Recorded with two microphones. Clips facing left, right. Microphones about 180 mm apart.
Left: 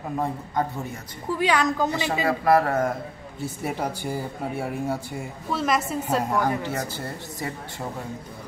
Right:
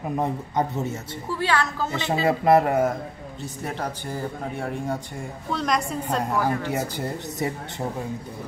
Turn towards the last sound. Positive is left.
turn(degrees=-20)  # may be behind; listen again after turning